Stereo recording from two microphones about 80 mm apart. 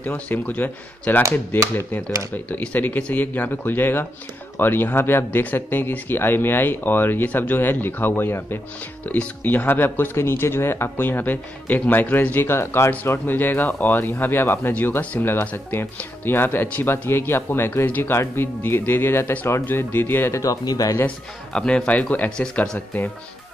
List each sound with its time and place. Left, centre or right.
0.0 s speech: centre
20.3 s speech: left
21.5 s speech: centre